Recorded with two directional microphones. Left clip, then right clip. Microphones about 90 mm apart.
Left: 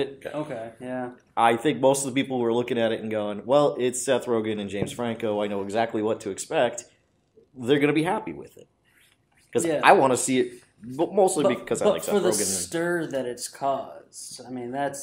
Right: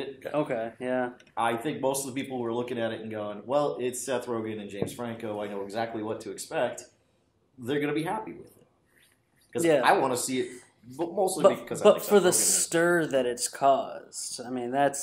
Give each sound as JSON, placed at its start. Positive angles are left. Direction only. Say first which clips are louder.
{"t": 0.3, "sound": "speech", "louder": "right 3 dB", "side_deg": -25}
{"t": 1.3, "sound": "speech", "louder": "left 9 dB", "side_deg": 30}
{"t": 9.8, "sound": "speech", "louder": "left 9 dB", "side_deg": 30}
{"t": 11.8, "sound": "speech", "louder": "right 3 dB", "side_deg": -25}